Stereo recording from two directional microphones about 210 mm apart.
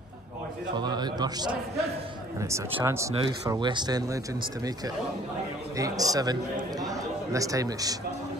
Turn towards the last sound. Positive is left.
turn(degrees=-15)  # may be behind; listen again after turning